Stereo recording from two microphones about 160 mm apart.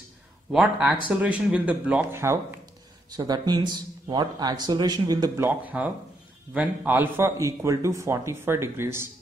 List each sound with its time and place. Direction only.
0.5 s a man's voice: 5° right (ahead or behind); by 5.5 s 25° right (ahead or behind)
5.5 s a man's voice: 10° right (ahead or behind)